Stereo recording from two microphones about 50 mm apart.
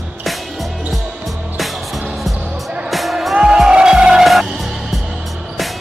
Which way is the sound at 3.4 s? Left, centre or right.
Centre.